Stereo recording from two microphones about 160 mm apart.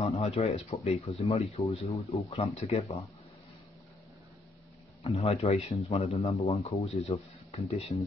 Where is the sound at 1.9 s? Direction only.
20° left (ahead or behind).